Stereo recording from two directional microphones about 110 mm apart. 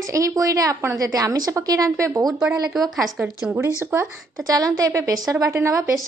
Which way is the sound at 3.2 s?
20° right (ahead or behind).